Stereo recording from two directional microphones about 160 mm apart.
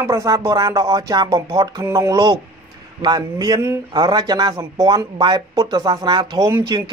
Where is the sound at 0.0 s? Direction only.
20° right (ahead or behind).